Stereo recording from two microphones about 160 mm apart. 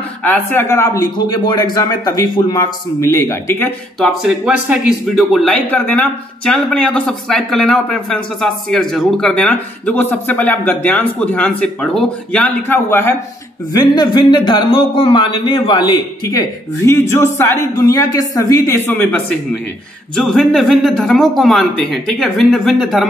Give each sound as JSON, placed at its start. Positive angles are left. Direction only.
{"t": 0.2, "sound": "a man's voice", "side_deg": 10}
{"t": 4.0, "sound": "speech", "side_deg": 0}
{"t": 13.7, "sound": "a man's voice", "side_deg": 25}